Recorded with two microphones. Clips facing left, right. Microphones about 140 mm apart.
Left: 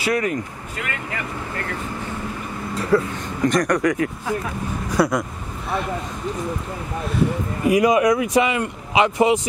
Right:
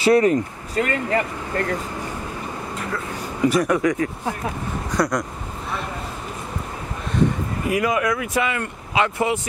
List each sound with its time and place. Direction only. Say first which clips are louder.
0.0 s speech: right 6 dB; 30° right (ahead or behind)
2.9 s speech: left 14 dB; 35° left (ahead or behind)
3.4 s speech: even; 5° right (ahead or behind)
7.6 s speech: left 6 dB; 15° left (ahead or behind)